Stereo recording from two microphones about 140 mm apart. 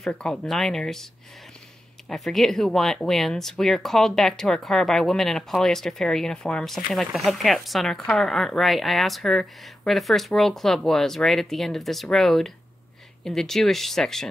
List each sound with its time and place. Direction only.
0.0 s a woman's voice: 5° left (ahead or behind)
2.0 s a woman's voice: centre (ahead or behind)